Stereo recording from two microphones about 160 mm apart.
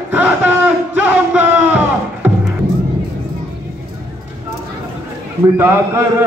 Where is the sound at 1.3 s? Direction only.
10° right (ahead or behind).